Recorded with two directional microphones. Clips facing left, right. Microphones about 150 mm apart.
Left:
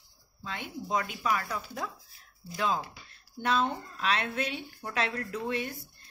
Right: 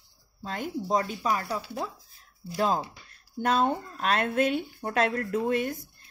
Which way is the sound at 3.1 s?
45° right (ahead or behind).